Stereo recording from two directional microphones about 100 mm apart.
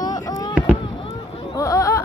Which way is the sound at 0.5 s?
10° right (ahead or behind).